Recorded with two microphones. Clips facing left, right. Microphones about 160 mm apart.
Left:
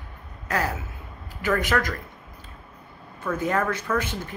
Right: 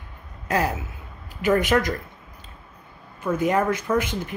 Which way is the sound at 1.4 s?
20° right (ahead or behind).